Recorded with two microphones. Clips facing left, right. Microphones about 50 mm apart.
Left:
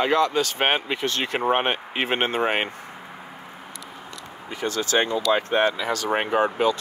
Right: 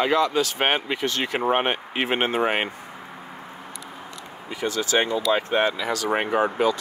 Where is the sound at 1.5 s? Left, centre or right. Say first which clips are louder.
Left 1 dB; left.